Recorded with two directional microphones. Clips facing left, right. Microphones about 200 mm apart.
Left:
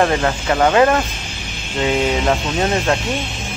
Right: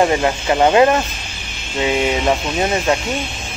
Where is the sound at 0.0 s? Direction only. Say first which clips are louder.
Right 1 dB; 15° right (ahead or behind).